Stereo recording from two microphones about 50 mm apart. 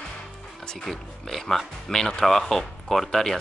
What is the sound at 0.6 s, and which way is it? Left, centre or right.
Speech, centre.